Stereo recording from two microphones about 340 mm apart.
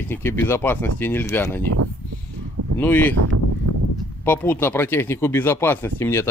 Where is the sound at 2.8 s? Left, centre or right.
Centre.